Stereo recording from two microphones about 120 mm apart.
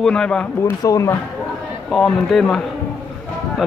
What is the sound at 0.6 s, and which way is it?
Speech, 25° left (ahead or behind).